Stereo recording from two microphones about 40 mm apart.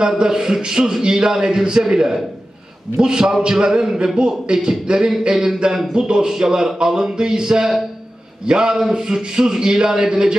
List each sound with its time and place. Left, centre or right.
0.3 s a man's voice: centre
5.2 s a sound: right
5.9 s a man's voice: right